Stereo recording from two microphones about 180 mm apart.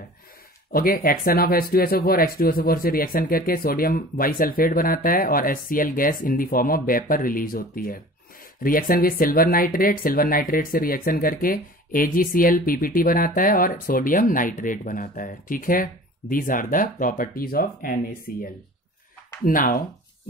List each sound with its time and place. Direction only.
0.7 s speech: 55° left (ahead or behind)